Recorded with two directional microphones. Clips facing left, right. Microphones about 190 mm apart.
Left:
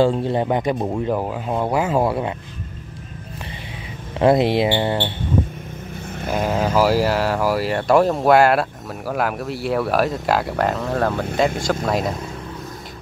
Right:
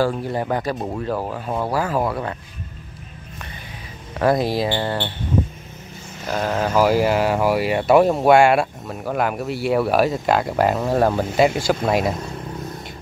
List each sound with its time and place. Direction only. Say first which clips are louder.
0.0 s speech: left 4 dB; 25° left (ahead or behind)
4.2 s speech: left 3 dB; 25° left (ahead or behind)
6.3 s speech: left 1 dB; 15° left (ahead or behind)
10.5 s speech: right 2 dB; 10° right (ahead or behind)